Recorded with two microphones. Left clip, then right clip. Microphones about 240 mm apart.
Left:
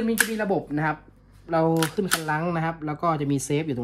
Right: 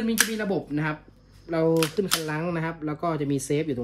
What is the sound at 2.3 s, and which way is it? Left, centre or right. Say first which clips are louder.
Speech: left 3 dB; left.